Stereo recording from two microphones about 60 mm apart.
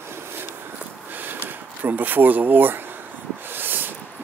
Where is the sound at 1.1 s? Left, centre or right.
Right.